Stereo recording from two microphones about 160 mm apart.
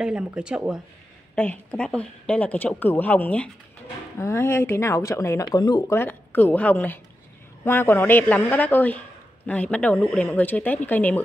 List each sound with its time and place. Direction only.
0.0 s speech: 5° right (ahead or behind)
1.3 s speech: 10° left (ahead or behind)